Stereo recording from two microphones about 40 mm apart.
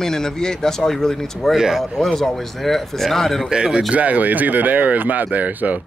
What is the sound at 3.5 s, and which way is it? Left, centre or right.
Speech, right.